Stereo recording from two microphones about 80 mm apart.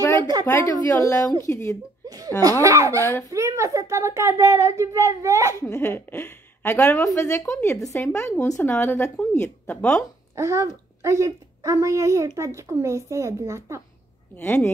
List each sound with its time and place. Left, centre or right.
0.2 s a woman's voice: right
0.5 s a woman's voice: left
2.0 s laughter: right
2.6 s speech: right
3.0 s a woman's voice: left
3.3 s speech: right
5.6 s a woman's voice: left
10.3 s a woman's voice: right
14.3 s a woman's voice: left